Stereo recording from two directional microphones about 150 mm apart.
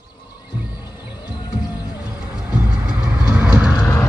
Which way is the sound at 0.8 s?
25° left (ahead or behind).